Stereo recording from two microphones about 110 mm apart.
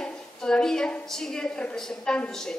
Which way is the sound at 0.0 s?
5° left (ahead or behind).